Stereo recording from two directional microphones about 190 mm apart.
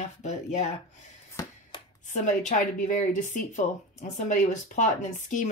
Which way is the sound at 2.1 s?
40° left (ahead or behind).